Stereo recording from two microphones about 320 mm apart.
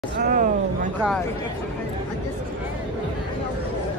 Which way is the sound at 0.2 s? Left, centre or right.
Right.